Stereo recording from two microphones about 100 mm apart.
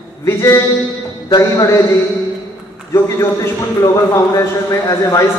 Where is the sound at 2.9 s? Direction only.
30° left (ahead or behind).